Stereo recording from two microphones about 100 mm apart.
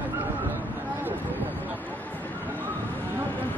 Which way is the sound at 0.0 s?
20° right (ahead or behind).